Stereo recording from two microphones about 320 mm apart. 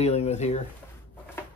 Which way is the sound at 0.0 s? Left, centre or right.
Left.